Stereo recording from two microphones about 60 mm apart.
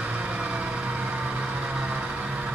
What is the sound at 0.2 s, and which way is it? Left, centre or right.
Vehicle, right.